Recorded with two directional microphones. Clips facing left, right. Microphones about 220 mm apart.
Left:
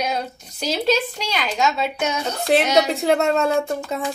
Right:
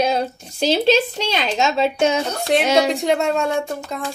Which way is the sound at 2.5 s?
5° left (ahead or behind).